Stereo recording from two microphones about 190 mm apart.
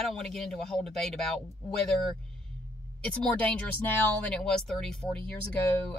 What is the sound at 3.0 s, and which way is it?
Speech, 5° left (ahead or behind).